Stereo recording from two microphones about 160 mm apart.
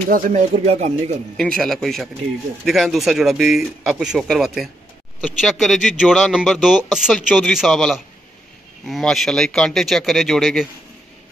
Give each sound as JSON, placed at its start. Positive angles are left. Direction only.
{"t": 0.1, "sound": "speech", "side_deg": -55}
{"t": 1.3, "sound": "speech", "side_deg": 5}